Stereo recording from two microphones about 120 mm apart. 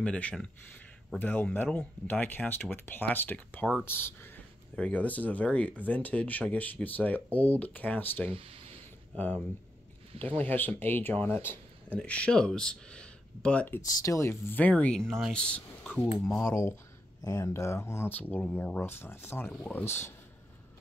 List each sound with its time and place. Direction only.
0.0 s speech: 10° left (ahead or behind)
8.4 s speech: 55° right (ahead or behind)
9.1 s speech: 15° left (ahead or behind)
10.4 s speech: 15° left (ahead or behind)
13.8 s speech: 25° left (ahead or behind); by 16.0 s 10° left (ahead or behind)
16.2 s speech: centre (ahead or behind)
16.4 s speech: 25° left (ahead or behind)